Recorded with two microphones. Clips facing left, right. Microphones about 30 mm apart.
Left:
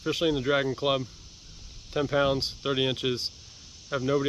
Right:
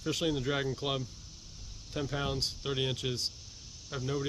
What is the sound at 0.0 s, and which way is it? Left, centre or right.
Speech, left.